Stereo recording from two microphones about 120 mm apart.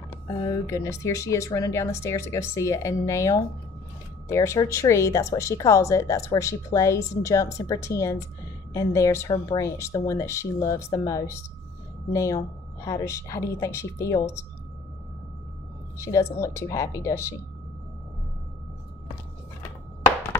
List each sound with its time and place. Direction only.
0.4 s speech: 25° left (ahead or behind)
16.0 s speech: 25° left (ahead or behind)